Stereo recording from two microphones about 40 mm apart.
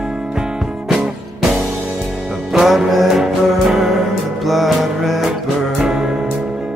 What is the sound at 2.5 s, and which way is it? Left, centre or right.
Music, centre.